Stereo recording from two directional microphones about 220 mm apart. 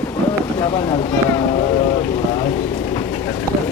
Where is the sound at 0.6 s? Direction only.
20° left (ahead or behind).